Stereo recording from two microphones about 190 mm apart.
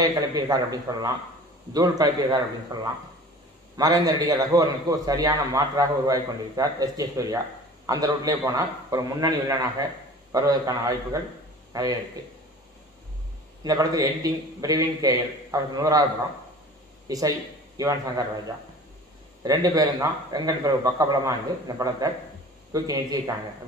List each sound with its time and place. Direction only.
0.0 s a man's voice: 20° right (ahead or behind)
13.7 s a man's voice: 20° right (ahead or behind)
17.1 s a man's voice: 20° right (ahead or behind)
19.4 s a man's voice: 20° right (ahead or behind)